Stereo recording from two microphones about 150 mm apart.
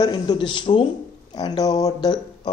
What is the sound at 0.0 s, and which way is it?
Speech, 30° left (ahead or behind).